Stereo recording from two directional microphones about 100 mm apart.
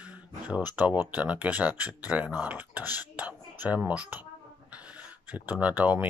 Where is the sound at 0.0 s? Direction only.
15° right (ahead or behind).